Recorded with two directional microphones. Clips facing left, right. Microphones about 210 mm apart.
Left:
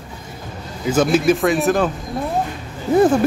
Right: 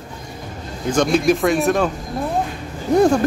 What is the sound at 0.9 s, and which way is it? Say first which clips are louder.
Speech: left 1 dB; 5° left (ahead or behind).